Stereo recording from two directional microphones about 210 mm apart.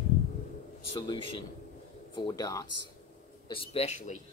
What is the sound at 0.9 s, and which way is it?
Speech, 20° left (ahead or behind).